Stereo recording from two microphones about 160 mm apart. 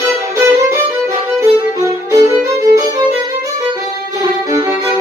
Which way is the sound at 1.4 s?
20° right (ahead or behind).